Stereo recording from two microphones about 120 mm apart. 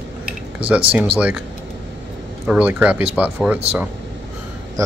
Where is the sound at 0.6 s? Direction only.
50° right (ahead or behind).